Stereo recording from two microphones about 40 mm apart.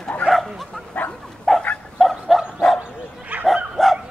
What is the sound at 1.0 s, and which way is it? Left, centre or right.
Dog, left.